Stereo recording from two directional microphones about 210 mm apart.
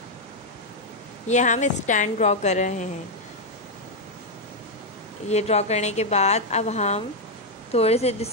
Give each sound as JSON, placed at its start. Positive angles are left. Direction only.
{"t": 1.2, "sound": "a woman's voice", "side_deg": 35}
{"t": 5.3, "sound": "a woman's voice", "side_deg": 30}